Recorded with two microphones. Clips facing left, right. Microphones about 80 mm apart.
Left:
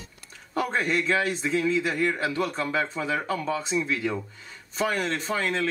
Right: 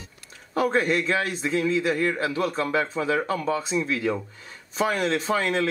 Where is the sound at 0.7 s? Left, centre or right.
Centre.